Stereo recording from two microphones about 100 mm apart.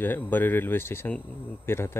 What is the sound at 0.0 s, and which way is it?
Speech, 20° left (ahead or behind).